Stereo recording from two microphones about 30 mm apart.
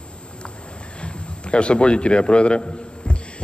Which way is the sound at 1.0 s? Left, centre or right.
Left.